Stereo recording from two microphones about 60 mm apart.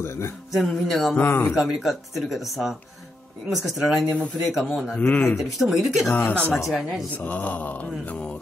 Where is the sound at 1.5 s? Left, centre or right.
Centre.